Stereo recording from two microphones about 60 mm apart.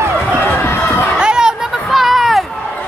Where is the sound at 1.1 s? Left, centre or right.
Centre.